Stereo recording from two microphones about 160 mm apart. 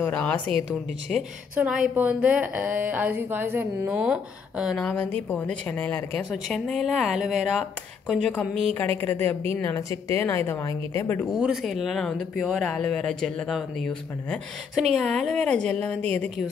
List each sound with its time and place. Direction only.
0.0 s a woman's voice: 10° left (ahead or behind)
1.5 s a woman's voice: 10° right (ahead or behind); by 11.2 s 15° left (ahead or behind)
11.3 s speech: 5° right (ahead or behind)